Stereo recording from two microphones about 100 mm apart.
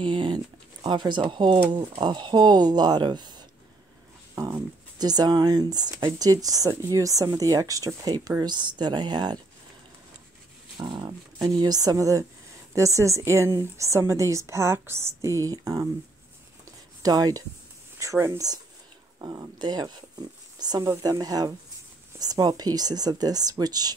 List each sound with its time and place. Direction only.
0.0 s a sound: 50° right (ahead or behind)
0.8 s speech: 45° right (ahead or behind)
4.9 s speech: 40° right (ahead or behind)
10.8 s speech: 50° right (ahead or behind)
17.0 s speech: 40° right (ahead or behind)
19.1 s speech: 45° right (ahead or behind)